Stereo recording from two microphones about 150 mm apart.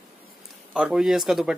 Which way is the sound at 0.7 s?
5° right (ahead or behind).